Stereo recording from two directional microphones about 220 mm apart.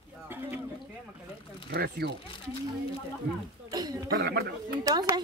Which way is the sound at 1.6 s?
50° right (ahead or behind).